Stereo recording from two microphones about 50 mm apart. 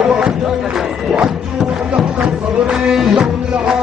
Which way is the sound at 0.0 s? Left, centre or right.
Centre.